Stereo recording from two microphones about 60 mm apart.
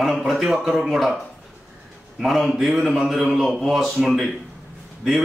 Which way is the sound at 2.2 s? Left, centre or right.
Centre.